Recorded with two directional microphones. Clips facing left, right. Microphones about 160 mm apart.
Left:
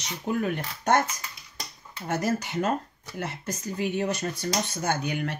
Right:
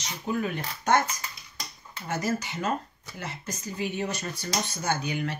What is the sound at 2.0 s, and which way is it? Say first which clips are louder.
Speech: left 2 dB; 60° left (ahead or behind).